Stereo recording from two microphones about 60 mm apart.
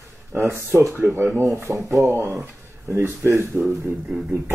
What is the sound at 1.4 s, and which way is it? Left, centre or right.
Speech, right.